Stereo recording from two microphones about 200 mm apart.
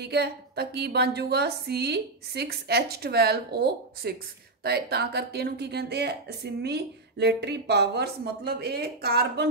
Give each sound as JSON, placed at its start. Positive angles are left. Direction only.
{"t": 0.0, "sound": "a woman's voice", "side_deg": -55}